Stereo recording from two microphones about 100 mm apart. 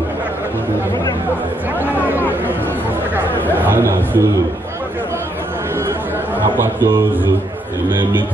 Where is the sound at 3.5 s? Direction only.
20° right (ahead or behind).